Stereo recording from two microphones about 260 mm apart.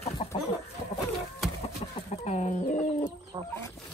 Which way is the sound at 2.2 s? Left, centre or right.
Left.